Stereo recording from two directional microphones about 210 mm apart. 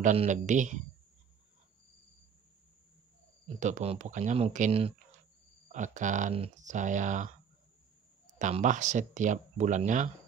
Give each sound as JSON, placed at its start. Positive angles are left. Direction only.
{"t": 0.0, "sound": "speech", "side_deg": -35}
{"t": 3.4, "sound": "speech", "side_deg": -35}
{"t": 8.4, "sound": "speech", "side_deg": -35}